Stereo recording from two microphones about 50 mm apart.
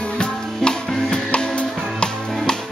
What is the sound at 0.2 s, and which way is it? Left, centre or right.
Music, centre.